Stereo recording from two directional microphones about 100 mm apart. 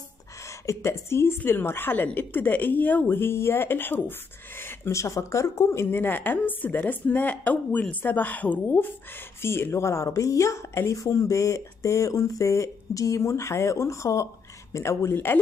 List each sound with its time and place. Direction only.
0.5 s speech: 30° left (ahead or behind)